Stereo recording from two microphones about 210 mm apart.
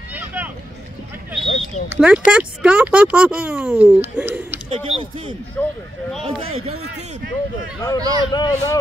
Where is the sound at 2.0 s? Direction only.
5° right (ahead or behind).